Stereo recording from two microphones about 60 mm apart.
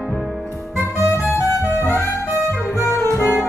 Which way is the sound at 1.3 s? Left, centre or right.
Left.